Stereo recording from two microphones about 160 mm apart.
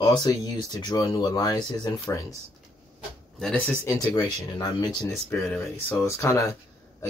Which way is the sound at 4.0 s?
30° left (ahead or behind).